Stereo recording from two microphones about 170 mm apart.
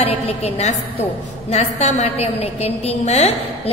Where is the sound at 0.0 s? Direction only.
40° left (ahead or behind).